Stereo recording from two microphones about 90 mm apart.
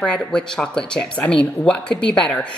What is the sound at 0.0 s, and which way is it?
A woman's voice, 10° left (ahead or behind).